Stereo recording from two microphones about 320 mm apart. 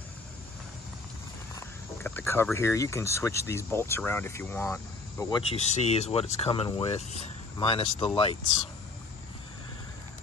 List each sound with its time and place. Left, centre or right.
2.0 s speech: centre